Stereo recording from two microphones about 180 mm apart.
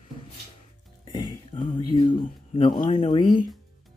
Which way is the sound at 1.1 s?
25° left (ahead or behind).